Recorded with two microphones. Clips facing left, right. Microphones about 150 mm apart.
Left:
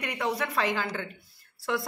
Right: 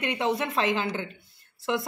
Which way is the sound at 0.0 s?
25° right (ahead or behind).